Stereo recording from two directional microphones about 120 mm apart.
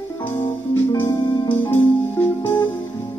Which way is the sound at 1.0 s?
20° left (ahead or behind).